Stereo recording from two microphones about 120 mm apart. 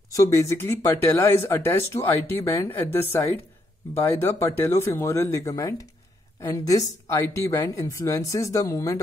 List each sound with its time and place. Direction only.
0.1 s speech: 25° left (ahead or behind)